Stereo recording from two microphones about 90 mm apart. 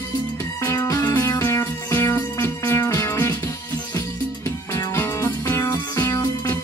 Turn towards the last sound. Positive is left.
turn(degrees=30)  # may be behind; listen again after turning